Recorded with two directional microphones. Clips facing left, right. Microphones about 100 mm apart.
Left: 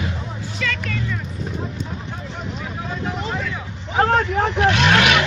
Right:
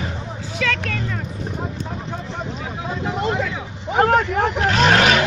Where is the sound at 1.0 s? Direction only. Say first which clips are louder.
Even; 50° right (ahead or behind).